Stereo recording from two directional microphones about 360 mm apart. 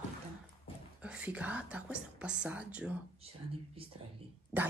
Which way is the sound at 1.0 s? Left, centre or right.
Centre.